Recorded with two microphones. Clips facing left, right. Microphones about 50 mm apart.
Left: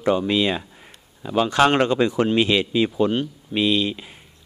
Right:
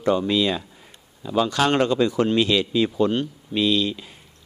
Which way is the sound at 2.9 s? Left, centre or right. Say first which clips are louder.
Even; centre.